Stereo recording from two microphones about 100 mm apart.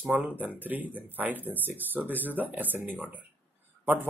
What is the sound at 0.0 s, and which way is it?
Speech, 15° right (ahead or behind).